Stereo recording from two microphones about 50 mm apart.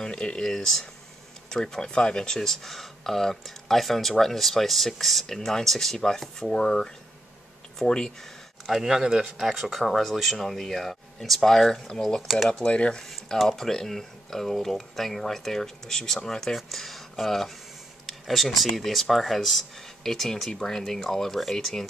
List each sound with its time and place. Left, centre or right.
0.0 s speech: centre
8.6 s speech: centre
12.6 s speech: left
13.1 s speech: centre